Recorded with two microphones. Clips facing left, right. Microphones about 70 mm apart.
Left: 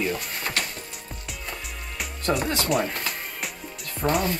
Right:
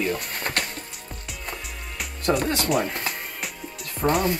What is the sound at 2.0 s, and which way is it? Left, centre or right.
Music, centre.